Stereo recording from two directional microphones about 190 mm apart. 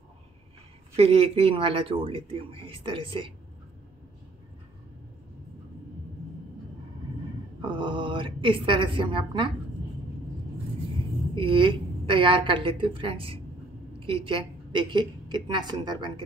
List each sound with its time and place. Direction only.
0.9 s speech: 30° right (ahead or behind)
7.6 s a woman's voice: 25° right (ahead or behind)
11.3 s a woman's voice: 25° right (ahead or behind)